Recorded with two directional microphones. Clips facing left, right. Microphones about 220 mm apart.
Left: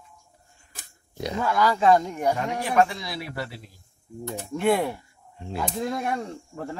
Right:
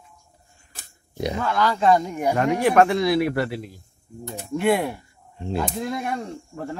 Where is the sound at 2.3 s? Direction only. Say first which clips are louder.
Right 8 dB; 70° right (ahead or behind).